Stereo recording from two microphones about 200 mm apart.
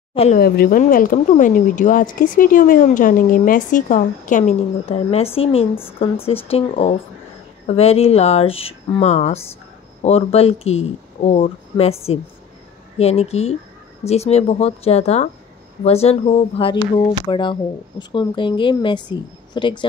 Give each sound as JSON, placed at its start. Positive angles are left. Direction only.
{"t": 0.1, "sound": "speech", "side_deg": 30}
{"t": 0.4, "sound": "speech", "side_deg": 45}